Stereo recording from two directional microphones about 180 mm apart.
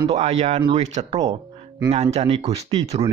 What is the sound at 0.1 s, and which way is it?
Speech, 40° right (ahead or behind).